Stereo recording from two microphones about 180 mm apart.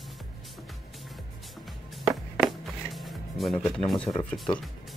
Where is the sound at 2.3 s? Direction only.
Centre (ahead or behind).